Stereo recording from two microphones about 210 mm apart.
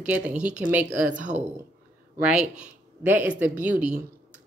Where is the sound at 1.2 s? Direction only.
35° right (ahead or behind).